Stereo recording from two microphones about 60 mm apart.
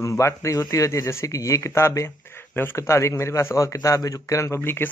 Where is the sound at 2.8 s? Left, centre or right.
Left.